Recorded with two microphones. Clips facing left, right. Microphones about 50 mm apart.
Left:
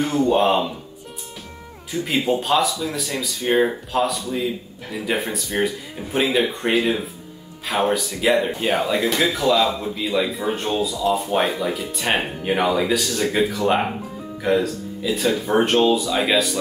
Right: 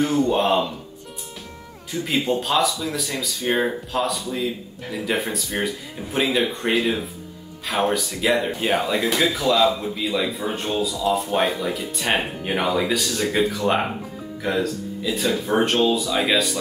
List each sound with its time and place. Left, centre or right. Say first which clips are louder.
0.0 s speech: left 2 dB; centre
1.9 s speech: left 2 dB; centre